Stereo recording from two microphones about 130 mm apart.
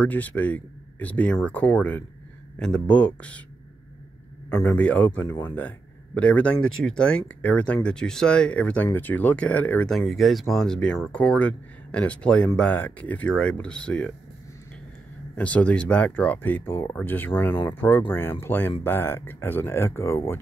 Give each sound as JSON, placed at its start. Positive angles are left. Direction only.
{"t": 0.0, "sound": "speech", "side_deg": 10}
{"t": 4.6, "sound": "speech", "side_deg": 10}
{"t": 9.9, "sound": "speech", "side_deg": 0}
{"t": 15.3, "sound": "speech", "side_deg": 10}